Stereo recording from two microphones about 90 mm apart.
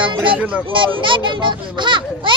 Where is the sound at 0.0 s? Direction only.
70° right (ahead or behind).